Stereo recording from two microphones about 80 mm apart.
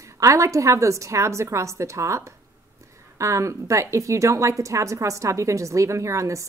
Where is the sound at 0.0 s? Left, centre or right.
Right.